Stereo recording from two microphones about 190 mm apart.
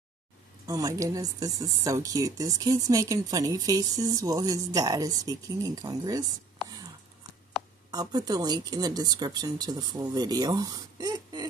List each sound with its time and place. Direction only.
0.7 s a woman's voice: 20° right (ahead or behind)
6.6 s whispering: centre (ahead or behind)
7.5 s a sound: centre (ahead or behind)
7.9 s a woman's voice: 20° right (ahead or behind)